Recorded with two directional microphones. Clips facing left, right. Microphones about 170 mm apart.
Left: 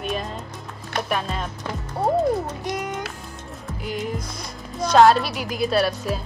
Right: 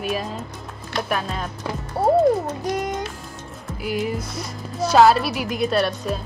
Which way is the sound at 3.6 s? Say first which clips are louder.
Right 4 dB; centre (ahead or behind).